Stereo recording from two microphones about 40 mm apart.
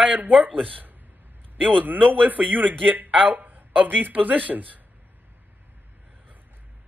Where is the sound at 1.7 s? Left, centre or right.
Right.